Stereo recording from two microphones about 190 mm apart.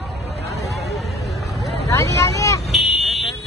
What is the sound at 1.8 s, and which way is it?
Vehicle, 15° left (ahead or behind).